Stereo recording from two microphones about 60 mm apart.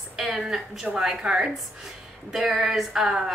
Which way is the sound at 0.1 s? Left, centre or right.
Centre.